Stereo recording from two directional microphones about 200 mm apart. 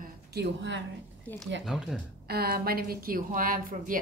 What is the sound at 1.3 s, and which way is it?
Speech, 10° left (ahead or behind).